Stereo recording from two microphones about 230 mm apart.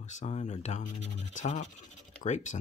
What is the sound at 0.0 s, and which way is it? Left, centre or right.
Speech, left.